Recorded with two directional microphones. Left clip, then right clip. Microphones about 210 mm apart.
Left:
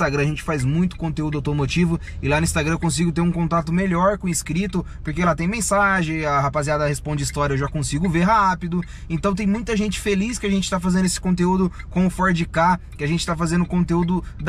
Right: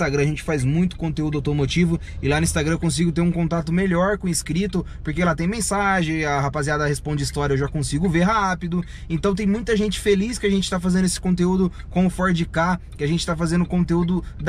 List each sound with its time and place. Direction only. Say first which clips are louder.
0.0 s speech: even; centre (ahead or behind)